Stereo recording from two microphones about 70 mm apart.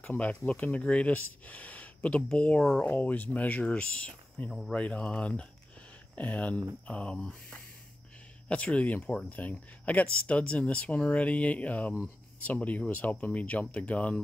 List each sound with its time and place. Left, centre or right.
0.0 s speech: left
4.5 s speech: centre
4.7 s speech: centre